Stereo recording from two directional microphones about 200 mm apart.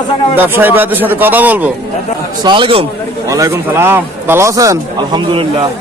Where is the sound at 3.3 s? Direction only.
15° right (ahead or behind).